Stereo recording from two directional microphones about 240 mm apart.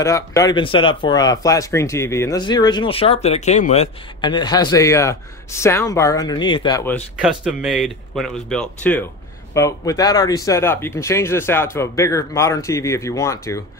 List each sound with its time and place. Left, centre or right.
0.0 s speech: centre
7.2 s speech: centre